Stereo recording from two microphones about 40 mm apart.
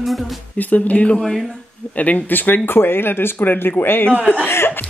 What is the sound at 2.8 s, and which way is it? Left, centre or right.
A man's voice, left.